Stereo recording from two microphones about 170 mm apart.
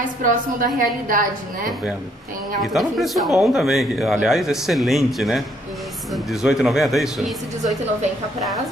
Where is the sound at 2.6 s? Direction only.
Centre (ahead or behind).